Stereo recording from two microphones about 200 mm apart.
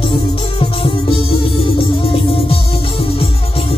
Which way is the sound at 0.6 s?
25° left (ahead or behind).